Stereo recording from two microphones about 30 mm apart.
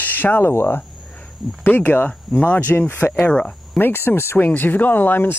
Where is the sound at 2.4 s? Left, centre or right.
Left.